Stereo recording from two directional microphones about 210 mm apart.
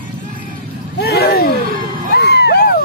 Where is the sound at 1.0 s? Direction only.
50° left (ahead or behind).